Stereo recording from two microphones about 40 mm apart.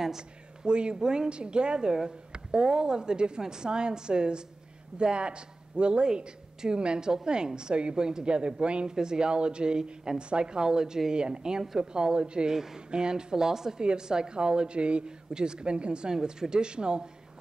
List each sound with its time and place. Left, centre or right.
0.7 s a woman's voice: right